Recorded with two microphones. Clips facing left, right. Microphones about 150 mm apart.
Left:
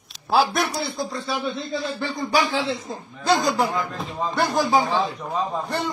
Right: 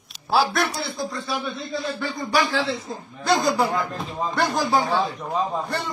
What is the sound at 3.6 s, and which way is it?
Speech, centre (ahead or behind).